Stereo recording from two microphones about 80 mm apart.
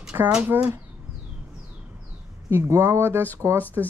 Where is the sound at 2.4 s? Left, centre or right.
Right.